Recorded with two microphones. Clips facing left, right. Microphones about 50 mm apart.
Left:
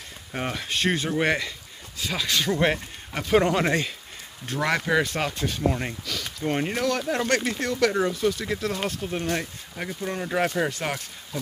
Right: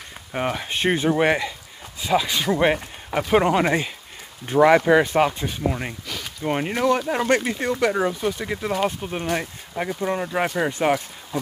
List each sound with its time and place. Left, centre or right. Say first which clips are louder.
0.3 s speech: right 4 dB; centre